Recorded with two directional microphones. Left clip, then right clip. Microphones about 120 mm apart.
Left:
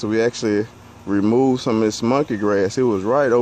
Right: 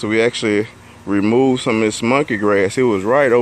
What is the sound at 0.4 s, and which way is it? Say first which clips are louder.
Speech: right 3 dB; 5° left (ahead or behind).